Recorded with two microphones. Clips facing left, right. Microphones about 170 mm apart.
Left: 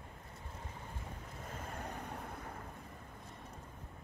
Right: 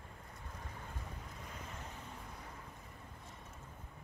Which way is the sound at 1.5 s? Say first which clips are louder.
Left 7 dB; 55° left (ahead or behind).